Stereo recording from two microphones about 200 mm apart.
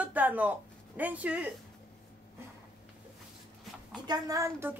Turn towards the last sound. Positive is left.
turn(degrees=-15)  # may be behind; listen again after turning